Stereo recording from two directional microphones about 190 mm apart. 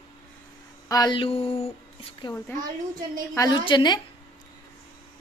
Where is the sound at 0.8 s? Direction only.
20° left (ahead or behind).